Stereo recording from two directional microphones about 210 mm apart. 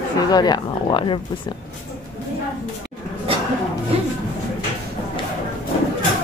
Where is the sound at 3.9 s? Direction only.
30° right (ahead or behind).